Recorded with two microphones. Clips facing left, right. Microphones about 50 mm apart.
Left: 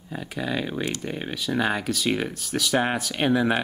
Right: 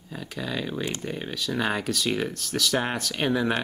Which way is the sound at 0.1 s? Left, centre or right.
Centre.